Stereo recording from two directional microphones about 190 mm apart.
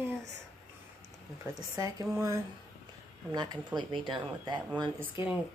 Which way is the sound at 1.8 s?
20° right (ahead or behind).